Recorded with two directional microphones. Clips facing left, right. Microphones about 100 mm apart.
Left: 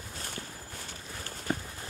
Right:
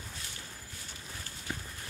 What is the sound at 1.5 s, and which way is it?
Run, 50° left (ahead or behind).